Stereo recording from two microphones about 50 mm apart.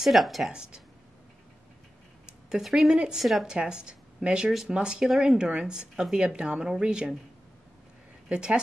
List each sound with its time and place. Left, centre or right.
0.0 s speech: centre
0.5 s speech: centre
2.6 s speech: centre
3.4 s speech: centre
8.3 s speech: centre